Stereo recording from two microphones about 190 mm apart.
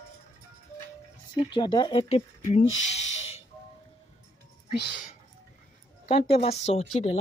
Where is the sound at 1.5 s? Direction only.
25° left (ahead or behind).